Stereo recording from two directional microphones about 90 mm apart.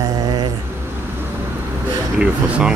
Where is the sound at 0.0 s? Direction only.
45° right (ahead or behind).